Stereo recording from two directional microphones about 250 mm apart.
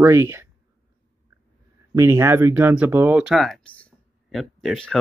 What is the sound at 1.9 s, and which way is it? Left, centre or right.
Speech, centre.